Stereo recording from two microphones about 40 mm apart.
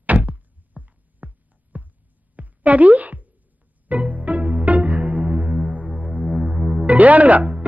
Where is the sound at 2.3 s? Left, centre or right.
Right.